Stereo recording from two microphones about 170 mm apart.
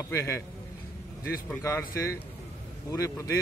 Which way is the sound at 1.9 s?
20° left (ahead or behind).